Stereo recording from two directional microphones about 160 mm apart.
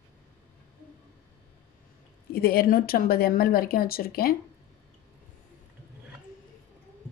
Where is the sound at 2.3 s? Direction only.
70° left (ahead or behind).